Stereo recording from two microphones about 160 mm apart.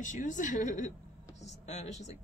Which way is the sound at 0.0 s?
50° left (ahead or behind).